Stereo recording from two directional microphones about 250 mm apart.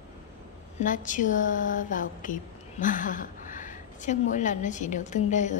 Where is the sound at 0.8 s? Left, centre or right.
Left.